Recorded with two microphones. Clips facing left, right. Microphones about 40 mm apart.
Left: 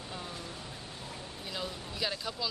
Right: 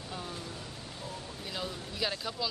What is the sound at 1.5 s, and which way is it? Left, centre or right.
Speech, centre.